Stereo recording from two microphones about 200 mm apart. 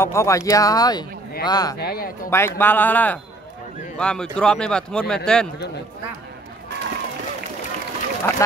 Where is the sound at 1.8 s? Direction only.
50° left (ahead or behind).